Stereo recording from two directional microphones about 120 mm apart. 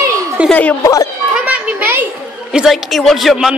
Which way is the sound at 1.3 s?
10° right (ahead or behind).